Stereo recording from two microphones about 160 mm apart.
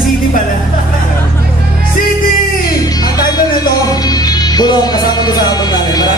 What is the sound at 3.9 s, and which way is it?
Music, 25° left (ahead or behind).